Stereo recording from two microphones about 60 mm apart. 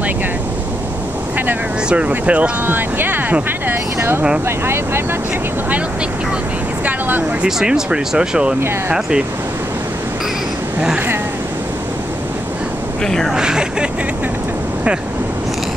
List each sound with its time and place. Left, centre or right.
1.9 s speech: right
2.6 s speech: right
6.8 s vehicle: right
7.4 s speech: centre
13.0 s speech: centre
13.3 s speech: centre